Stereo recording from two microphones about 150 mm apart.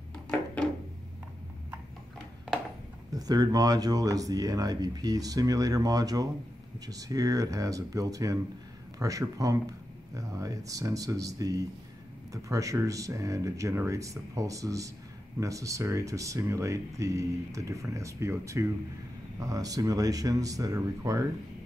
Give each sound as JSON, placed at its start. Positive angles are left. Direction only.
{"t": 3.1, "sound": "speech", "side_deg": -25}